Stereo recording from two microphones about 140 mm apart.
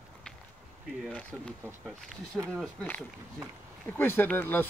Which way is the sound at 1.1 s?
10° left (ahead or behind).